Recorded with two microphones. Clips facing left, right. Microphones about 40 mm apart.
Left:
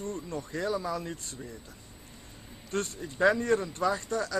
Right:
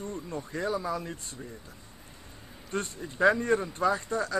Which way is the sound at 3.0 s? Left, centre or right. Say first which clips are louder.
Right 1 dB; centre.